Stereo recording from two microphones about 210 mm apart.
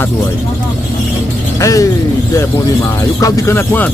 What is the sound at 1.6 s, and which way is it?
Speech, 15° left (ahead or behind).